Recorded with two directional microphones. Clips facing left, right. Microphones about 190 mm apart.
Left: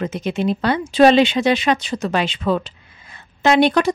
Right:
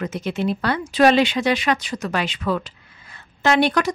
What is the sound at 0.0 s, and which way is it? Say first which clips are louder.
Speech: left 3 dB; 20° left (ahead or behind).